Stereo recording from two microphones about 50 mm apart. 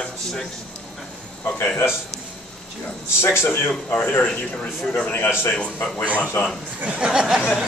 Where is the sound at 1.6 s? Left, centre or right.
Left.